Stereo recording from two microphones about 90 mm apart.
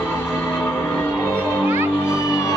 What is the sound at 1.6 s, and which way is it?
Music, 25° right (ahead or behind).